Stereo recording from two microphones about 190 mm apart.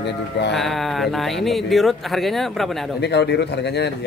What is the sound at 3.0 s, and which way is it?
Speech, 60° left (ahead or behind).